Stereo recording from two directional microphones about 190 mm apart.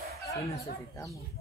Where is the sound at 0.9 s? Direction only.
15° left (ahead or behind).